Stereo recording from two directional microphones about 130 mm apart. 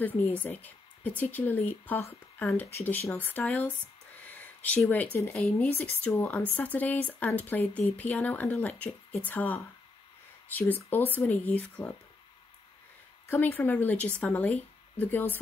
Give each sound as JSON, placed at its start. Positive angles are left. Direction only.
{"t": 0.0, "sound": "speech", "side_deg": 15}
{"t": 4.2, "sound": "a sound", "side_deg": 10}
{"t": 4.8, "sound": "speech", "side_deg": 15}
{"t": 13.3, "sound": "speech", "side_deg": 15}